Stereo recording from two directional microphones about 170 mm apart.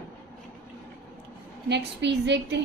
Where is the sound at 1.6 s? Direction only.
90° right.